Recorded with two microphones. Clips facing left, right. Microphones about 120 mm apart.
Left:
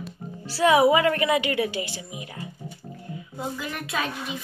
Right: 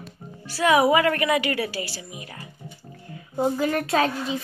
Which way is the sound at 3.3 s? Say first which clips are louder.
Right 10 dB; 40° right (ahead or behind).